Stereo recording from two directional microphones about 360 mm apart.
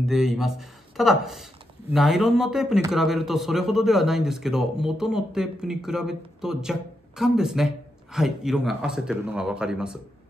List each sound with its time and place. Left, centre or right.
0.0 s speech: centre